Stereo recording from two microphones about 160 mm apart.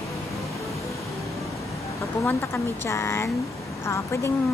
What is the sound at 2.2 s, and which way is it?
Speech, 15° left (ahead or behind).